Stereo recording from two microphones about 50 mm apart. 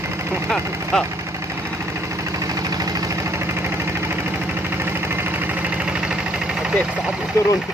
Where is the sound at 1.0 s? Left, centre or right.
Right.